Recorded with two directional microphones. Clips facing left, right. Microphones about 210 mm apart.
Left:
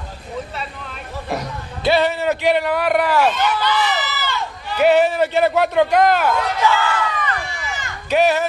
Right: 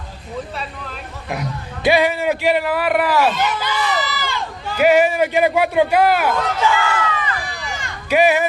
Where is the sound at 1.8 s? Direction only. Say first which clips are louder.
Right 1 dB; 10° right (ahead or behind).